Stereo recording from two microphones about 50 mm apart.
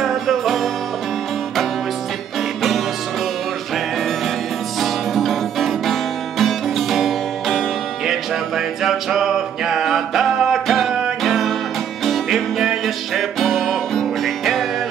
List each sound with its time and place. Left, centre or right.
0.0 s music: centre
4.7 s music: centre